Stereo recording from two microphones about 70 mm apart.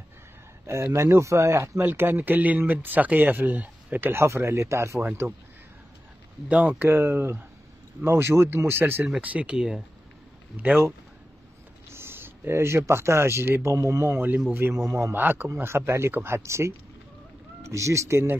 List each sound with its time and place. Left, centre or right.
0.7 s speech: right
1.8 s speech: right
4.1 s speech: right
6.5 s speech: right
9.2 s speech: right
9.5 s speech: centre
11.9 s speech: right
14.5 s speech: right
15.1 s speech: right
15.4 s speech: right